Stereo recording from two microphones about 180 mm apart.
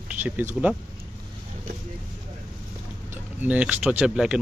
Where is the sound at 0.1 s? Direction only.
10° right (ahead or behind).